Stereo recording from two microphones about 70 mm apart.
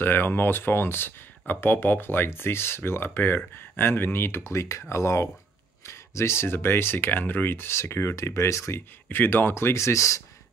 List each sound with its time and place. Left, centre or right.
0.0 s speech: left
4.5 s speech: left
9.1 s speech: left